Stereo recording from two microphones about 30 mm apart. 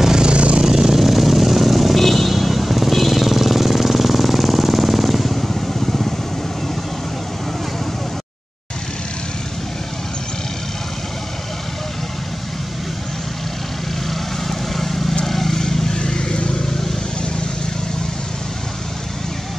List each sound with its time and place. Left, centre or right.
0.2 s vehicle: right
0.6 s vehicle: centre
14.1 s vehicle: centre
16.0 s vehicle: left